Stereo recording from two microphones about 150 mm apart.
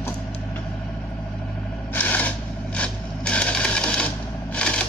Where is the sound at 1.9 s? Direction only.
10° left (ahead or behind).